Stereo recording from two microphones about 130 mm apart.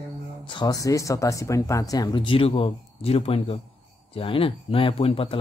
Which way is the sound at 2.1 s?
40° left (ahead or behind).